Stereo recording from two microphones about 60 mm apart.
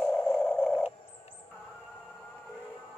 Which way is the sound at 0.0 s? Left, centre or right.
Left.